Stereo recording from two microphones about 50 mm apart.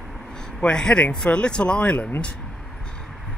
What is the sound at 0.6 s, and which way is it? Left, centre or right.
Speech, centre.